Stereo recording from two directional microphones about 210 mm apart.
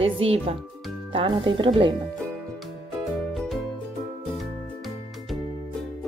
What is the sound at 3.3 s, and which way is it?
Music, centre (ahead or behind).